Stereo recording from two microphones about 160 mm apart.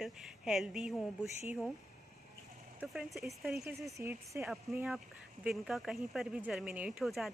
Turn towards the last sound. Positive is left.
turn(degrees=0)  # may be behind; listen again after turning